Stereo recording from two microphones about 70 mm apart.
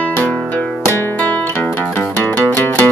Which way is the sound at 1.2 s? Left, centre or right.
Left.